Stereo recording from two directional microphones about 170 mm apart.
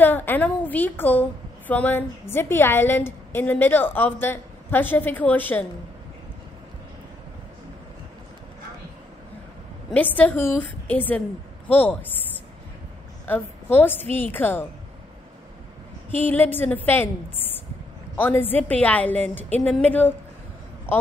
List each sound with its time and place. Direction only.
0.0 s a woman's voice: 10° left (ahead or behind)
9.8 s a woman's voice: 10° left (ahead or behind)
16.1 s a woman's voice: 10° left (ahead or behind)